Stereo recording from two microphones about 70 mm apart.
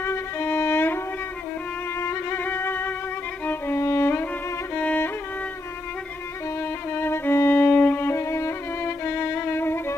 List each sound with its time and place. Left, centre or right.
0.0 s violin: left
3.4 s music: left
6.9 s violin: left